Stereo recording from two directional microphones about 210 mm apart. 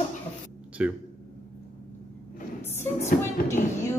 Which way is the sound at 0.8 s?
5° right (ahead or behind).